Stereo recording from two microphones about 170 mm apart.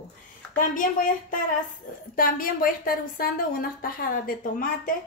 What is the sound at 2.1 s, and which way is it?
A woman's voice, 55° left (ahead or behind).